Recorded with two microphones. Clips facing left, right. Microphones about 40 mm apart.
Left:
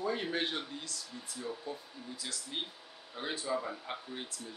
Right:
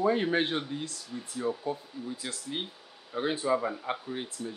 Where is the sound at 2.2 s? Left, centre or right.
Right.